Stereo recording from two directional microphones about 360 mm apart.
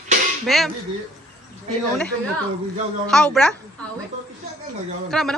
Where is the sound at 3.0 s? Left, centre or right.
Centre.